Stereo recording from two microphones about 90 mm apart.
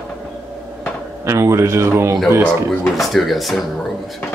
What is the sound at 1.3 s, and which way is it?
Speech, 30° right (ahead or behind).